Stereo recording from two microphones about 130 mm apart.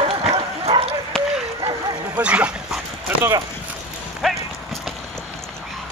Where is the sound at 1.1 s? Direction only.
5° left (ahead or behind).